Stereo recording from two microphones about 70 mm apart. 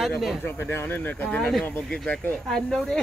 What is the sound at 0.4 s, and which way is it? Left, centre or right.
Speech, left.